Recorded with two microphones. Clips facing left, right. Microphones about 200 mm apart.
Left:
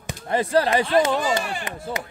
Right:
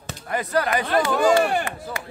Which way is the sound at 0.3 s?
30° left (ahead or behind).